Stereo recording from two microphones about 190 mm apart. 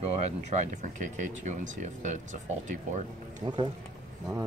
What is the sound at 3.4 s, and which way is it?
Speech, 25° right (ahead or behind).